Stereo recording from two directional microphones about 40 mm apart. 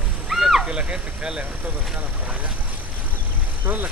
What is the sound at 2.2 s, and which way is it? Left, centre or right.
Vehicle, right.